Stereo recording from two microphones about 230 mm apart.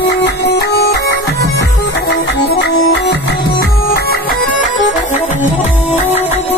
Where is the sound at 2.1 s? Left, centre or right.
Left.